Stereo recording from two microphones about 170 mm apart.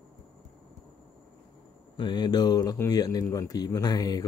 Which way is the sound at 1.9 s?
25° left (ahead or behind).